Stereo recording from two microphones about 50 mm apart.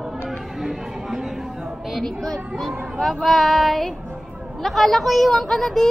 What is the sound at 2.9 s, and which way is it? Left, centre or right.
A child's voice, centre.